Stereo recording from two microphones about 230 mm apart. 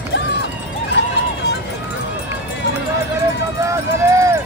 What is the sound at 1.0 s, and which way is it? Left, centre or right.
Run, left.